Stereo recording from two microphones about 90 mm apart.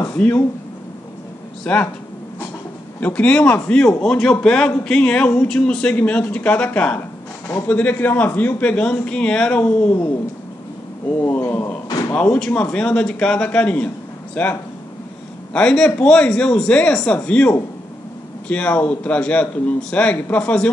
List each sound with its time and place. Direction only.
0.1 s a man's voice: 20° left (ahead or behind)
1.6 s a man's voice: 10° left (ahead or behind)
3.0 s a man's voice: 15° left (ahead or behind)
11.2 s a man's voice: 20° left (ahead or behind)
18.5 s a man's voice: 15° left (ahead or behind)